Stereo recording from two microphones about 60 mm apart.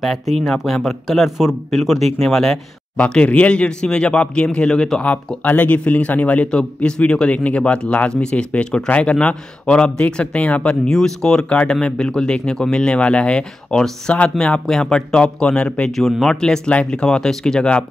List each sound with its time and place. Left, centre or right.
0.0 s speech: centre
3.0 s speech: left
5.0 s speech: left
10.9 s speech: centre
16.0 s speech: centre